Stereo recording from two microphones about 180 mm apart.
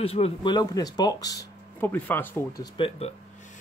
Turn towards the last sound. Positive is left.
turn(degrees=30)  # may be behind; listen again after turning